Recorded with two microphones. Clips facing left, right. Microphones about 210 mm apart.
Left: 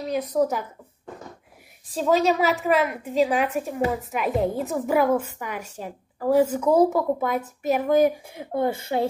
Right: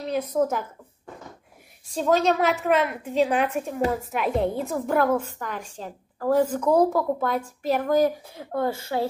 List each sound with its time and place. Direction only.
0.0 s a woman's voice: centre (ahead or behind)
1.9 s a woman's voice: centre (ahead or behind)
8.5 s a woman's voice: 20° left (ahead or behind)